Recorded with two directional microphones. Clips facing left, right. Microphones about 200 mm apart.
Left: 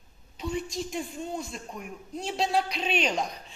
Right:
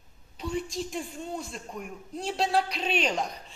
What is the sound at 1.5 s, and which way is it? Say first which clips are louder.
A man's voice: even; centre (ahead or behind).